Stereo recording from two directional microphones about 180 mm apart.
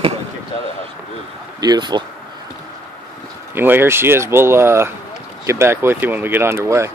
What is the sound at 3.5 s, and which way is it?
Speech, 10° right (ahead or behind).